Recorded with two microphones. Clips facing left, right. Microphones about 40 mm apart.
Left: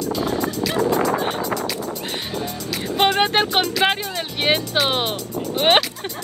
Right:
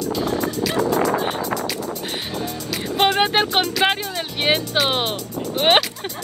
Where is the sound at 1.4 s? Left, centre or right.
Left.